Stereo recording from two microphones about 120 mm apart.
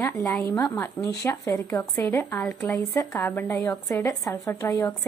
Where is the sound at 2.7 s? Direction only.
25° left (ahead or behind).